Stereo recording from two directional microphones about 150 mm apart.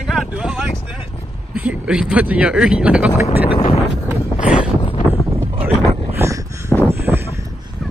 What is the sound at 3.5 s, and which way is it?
Wind noise, 35° left (ahead or behind).